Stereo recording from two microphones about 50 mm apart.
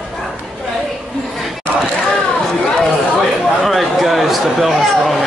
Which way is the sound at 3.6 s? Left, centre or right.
Centre.